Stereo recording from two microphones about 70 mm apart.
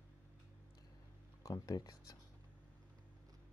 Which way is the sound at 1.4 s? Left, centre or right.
Left.